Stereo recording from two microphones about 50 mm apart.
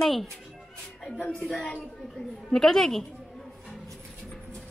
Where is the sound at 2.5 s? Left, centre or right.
Centre.